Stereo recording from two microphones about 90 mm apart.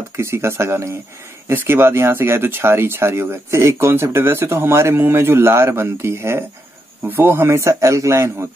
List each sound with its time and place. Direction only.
0.1 s speech: 30° right (ahead or behind)